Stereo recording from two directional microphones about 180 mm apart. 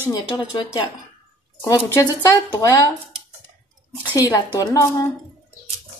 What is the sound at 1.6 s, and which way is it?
Speech, 20° left (ahead or behind).